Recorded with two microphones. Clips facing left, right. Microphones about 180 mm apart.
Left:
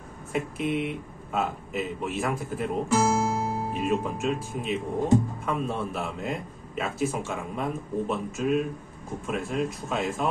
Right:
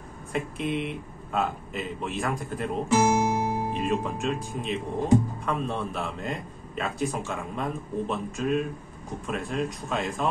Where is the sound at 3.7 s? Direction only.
Centre (ahead or behind).